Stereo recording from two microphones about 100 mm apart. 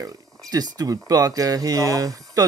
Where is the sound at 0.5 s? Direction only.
40° right (ahead or behind).